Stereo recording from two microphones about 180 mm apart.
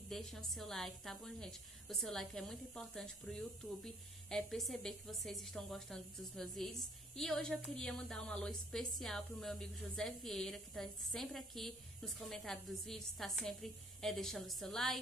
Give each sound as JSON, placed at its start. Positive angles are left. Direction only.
{"t": 0.1, "sound": "a woman's voice", "side_deg": 0}